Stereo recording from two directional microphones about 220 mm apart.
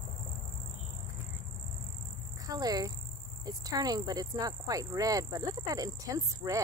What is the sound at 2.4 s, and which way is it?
Speech, 15° right (ahead or behind).